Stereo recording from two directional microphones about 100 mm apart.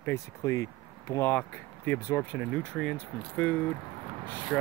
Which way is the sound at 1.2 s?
15° left (ahead or behind).